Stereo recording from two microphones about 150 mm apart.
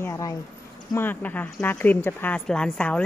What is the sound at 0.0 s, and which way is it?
Speech, 20° left (ahead or behind).